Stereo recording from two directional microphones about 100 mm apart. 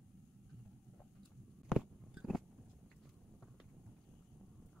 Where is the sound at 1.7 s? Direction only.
5° right (ahead or behind).